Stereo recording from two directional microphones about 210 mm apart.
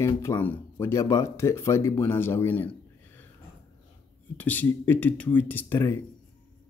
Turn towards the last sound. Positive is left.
turn(degrees=10)  # may be behind; listen again after turning